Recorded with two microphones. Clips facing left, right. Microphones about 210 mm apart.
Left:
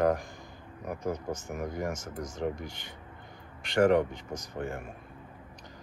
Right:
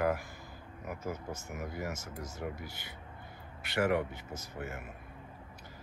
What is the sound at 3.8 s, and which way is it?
Speech, 45° left (ahead or behind).